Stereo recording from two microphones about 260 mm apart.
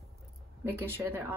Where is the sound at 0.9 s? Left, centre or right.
Centre.